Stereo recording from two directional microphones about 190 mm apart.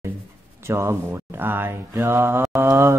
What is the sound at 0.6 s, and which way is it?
Mantra, 15° right (ahead or behind).